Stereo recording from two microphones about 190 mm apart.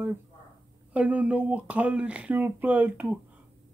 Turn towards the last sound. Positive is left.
turn(degrees=-10)  # may be behind; listen again after turning